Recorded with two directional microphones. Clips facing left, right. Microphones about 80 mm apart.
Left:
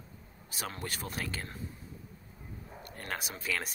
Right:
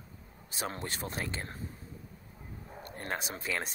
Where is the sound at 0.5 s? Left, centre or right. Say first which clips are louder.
Right 2 dB; right.